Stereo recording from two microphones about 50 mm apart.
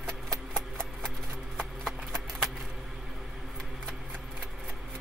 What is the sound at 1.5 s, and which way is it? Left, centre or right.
Clip-clop, centre.